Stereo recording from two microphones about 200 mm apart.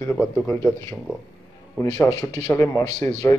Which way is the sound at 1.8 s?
15° left (ahead or behind).